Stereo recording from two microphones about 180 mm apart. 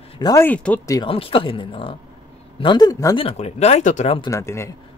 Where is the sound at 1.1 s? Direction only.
30° left (ahead or behind).